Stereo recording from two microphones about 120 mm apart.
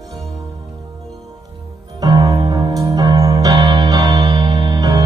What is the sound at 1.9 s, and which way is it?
Music, 35° right (ahead or behind).